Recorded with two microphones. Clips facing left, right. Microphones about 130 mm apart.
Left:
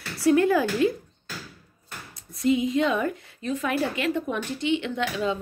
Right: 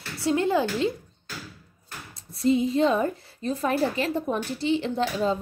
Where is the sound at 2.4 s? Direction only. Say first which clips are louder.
Right 1 dB; 35° right (ahead or behind).